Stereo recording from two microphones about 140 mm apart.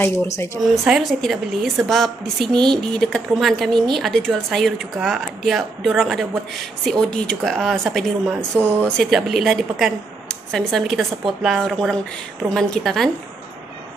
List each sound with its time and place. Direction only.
0.6 s a woman's voice: centre (ahead or behind)